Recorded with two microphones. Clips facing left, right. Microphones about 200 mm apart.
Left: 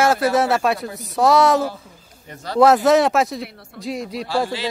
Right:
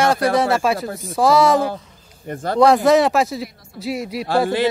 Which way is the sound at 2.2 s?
50° right (ahead or behind).